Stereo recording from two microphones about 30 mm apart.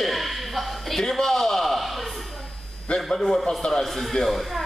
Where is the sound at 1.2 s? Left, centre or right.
Centre.